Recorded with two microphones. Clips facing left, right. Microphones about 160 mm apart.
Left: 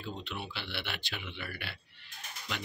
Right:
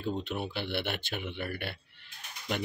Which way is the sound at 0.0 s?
50° right (ahead or behind).